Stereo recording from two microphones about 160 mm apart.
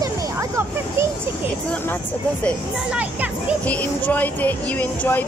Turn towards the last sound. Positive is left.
turn(degrees=10)  # may be behind; listen again after turning